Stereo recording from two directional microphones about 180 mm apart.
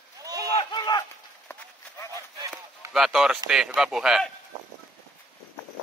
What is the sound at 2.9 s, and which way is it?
A man's voice, centre (ahead or behind).